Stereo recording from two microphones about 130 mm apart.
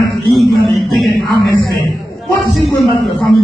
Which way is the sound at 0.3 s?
Centre (ahead or behind).